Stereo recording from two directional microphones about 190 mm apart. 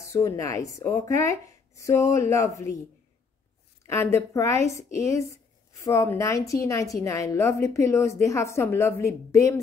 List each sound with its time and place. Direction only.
0.0 s a woman's voice: 15° left (ahead or behind)
3.8 s a woman's voice: 15° left (ahead or behind)